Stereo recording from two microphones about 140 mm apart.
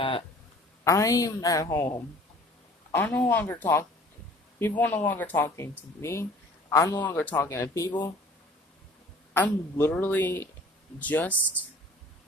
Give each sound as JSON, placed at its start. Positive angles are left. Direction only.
{"t": 0.8, "sound": "a woman's voice", "side_deg": 25}
{"t": 2.9, "sound": "a woman's voice", "side_deg": 15}
{"t": 9.3, "sound": "a woman's voice", "side_deg": 15}